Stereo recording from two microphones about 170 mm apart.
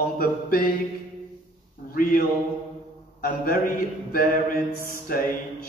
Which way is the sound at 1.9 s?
55° left (ahead or behind).